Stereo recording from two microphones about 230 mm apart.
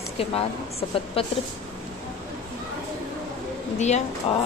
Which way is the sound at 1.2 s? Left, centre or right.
Left.